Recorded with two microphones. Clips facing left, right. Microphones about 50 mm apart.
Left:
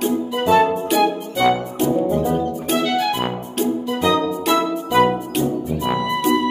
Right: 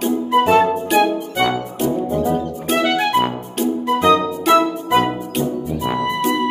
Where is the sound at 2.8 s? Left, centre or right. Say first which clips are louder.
Right 5 dB; right.